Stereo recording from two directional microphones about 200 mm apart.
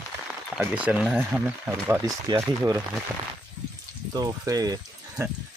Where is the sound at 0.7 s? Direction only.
5° right (ahead or behind).